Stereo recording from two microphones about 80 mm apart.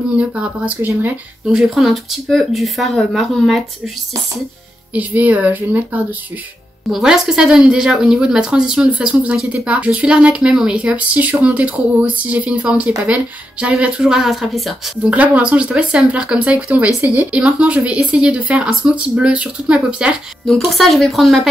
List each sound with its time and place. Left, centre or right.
0.2 s speech: centre
1.4 s speech: centre
4.9 s a woman's voice: right
6.9 s speech: centre
15.0 s a woman's voice: centre
20.4 s speech: centre